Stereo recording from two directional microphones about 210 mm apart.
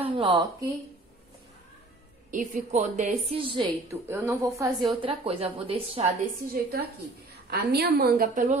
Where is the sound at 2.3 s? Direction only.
40° right (ahead or behind).